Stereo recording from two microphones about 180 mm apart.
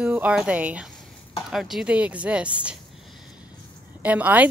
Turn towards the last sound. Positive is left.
turn(degrees=-10)  # may be behind; listen again after turning